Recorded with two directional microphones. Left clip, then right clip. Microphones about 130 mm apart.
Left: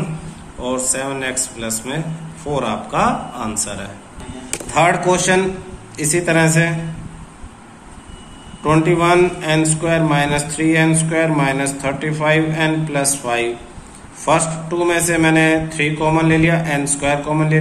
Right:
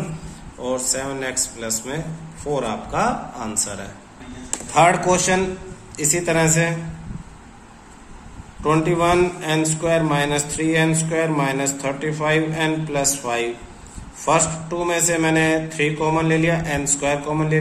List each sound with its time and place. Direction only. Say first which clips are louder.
0.6 s a man's voice: left 3 dB; 40° right (ahead or behind)
8.6 s a man's voice: left 4 dB; 35° right (ahead or behind)